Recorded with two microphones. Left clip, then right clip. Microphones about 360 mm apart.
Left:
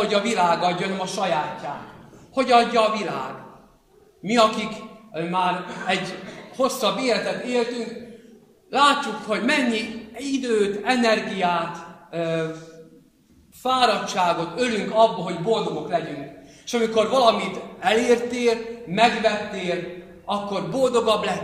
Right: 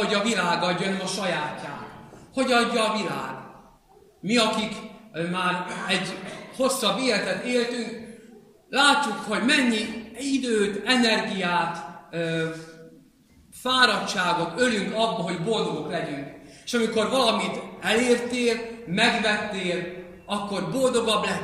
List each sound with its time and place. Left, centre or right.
0.0 s a man's voice: centre
2.3 s a man's voice: centre
4.3 s a man's voice: centre
8.6 s a man's voice: centre
13.6 s a man's voice: centre